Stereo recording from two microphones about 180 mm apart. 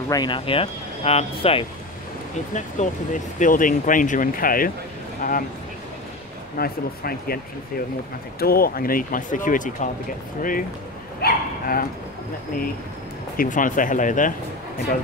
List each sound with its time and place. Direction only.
0.1 s speech: 25° left (ahead or behind)
2.5 s speech: 45° left (ahead or behind)
6.6 s speech: 55° left (ahead or behind)
8.4 s speech: 55° left (ahead or behind)
11.1 s dog: 55° left (ahead or behind)
13.4 s speech: 45° left (ahead or behind)